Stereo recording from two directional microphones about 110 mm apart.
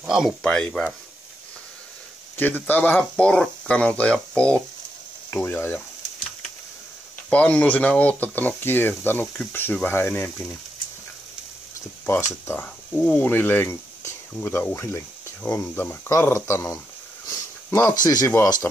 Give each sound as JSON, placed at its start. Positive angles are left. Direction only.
{"t": 0.0, "sound": "speech", "side_deg": -5}
{"t": 0.4, "sound": "speech", "side_deg": 10}
{"t": 2.3, "sound": "speech", "side_deg": 15}
{"t": 7.2, "sound": "speech", "side_deg": 10}
{"t": 12.1, "sound": "speech", "side_deg": 20}
{"t": 17.3, "sound": "sniff", "side_deg": 25}
{"t": 18.4, "sound": "speech", "side_deg": 30}